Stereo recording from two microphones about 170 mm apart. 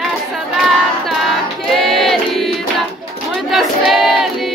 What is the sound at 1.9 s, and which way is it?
Choir, centre (ahead or behind).